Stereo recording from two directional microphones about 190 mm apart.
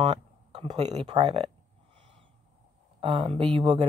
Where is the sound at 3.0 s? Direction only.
30° right (ahead or behind).